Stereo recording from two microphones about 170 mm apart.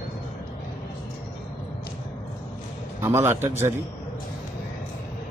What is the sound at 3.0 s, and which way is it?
Speech, 15° right (ahead or behind).